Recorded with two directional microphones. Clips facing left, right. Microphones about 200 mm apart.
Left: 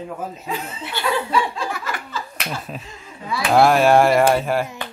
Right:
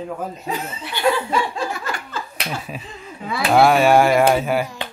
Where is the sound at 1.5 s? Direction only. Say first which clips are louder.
Right 1 dB; 50° right (ahead or behind).